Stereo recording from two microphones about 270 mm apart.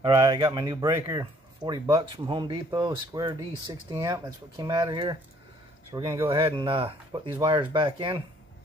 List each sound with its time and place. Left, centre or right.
0.0 s speech: centre